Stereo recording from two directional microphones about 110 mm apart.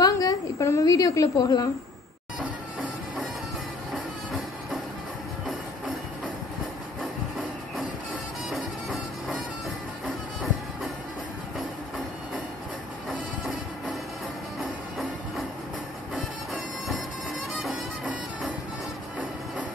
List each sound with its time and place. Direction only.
0.0 s a sound: 35° left (ahead or behind)
10.0 s music: centre (ahead or behind)
14.6 s music: centre (ahead or behind)